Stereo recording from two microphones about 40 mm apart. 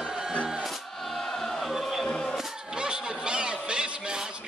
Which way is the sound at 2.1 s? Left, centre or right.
Left.